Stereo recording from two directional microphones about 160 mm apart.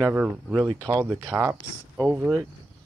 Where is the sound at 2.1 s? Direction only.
5° right (ahead or behind).